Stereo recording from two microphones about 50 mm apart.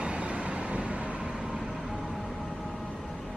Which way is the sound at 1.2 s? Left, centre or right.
Centre.